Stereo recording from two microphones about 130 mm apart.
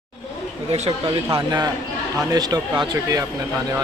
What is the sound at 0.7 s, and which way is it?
Speech, 50° right (ahead or behind).